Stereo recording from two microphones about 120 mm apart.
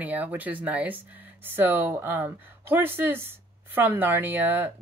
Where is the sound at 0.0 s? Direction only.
15° right (ahead or behind).